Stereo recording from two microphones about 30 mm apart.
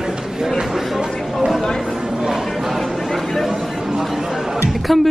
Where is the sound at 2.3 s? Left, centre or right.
Centre.